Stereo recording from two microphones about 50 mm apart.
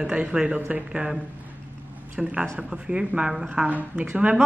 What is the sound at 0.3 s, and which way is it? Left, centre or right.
Speech, centre.